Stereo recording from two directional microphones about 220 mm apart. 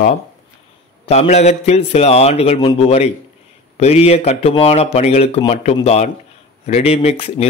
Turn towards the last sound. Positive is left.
turn(degrees=30)  # may be behind; listen again after turning